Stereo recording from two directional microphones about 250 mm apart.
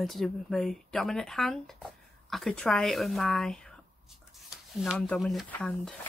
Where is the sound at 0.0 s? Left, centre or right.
Centre.